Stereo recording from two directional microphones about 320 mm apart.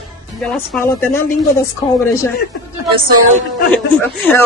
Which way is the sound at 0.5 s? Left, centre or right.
Centre.